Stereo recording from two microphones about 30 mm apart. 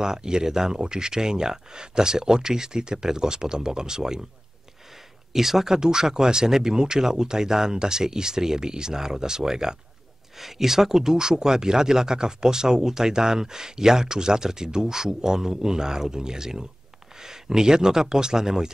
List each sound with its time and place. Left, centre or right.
0.0 s speech: right
5.3 s speech: centre
5.8 s speech: right